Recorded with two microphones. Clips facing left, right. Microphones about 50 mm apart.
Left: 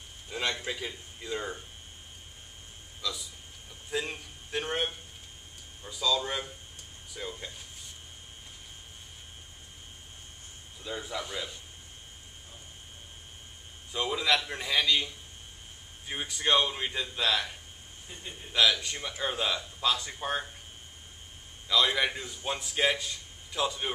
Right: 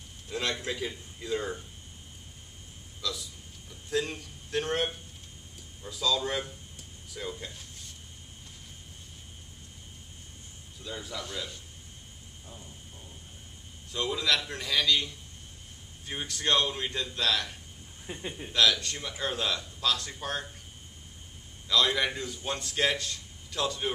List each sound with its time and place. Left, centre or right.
0.3 s a man's voice: centre
3.0 s a man's voice: centre
10.8 s a man's voice: centre
13.9 s a man's voice: centre
16.1 s a man's voice: centre
18.1 s a man's voice: right
18.5 s a man's voice: centre
21.6 s a man's voice: centre